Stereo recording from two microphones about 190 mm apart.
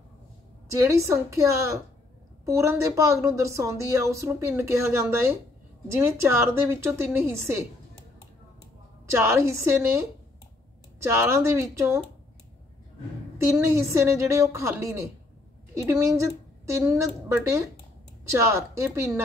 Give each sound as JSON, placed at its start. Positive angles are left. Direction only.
{"t": 0.7, "sound": "a woman's voice", "side_deg": -15}
{"t": 9.2, "sound": "a woman's voice", "side_deg": -15}
{"t": 13.5, "sound": "a woman's voice", "side_deg": -15}